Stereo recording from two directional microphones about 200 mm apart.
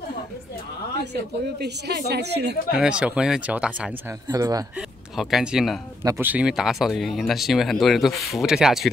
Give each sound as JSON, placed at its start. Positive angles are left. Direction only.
{"t": 1.1, "sound": "speech", "side_deg": -55}
{"t": 2.7, "sound": "speech", "side_deg": -5}
{"t": 4.3, "sound": "speech", "side_deg": -20}
{"t": 5.1, "sound": "speech", "side_deg": 0}